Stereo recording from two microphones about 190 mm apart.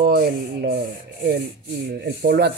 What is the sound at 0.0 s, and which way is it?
Sanding, 50° right (ahead or behind).